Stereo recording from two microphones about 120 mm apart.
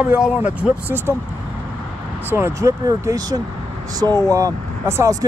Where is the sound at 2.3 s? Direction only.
25° right (ahead or behind).